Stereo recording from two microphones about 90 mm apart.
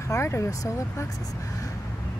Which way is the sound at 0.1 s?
35° left (ahead or behind).